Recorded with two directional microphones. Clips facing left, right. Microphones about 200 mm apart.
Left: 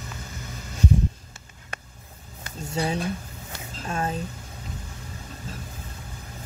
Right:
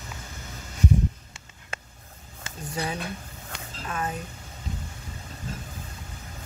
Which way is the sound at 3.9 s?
30° left (ahead or behind).